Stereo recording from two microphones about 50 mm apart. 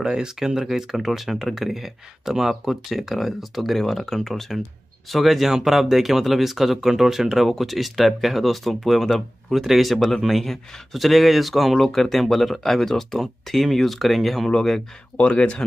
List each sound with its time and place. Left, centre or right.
0.0 s speech: centre
15.1 s speech: left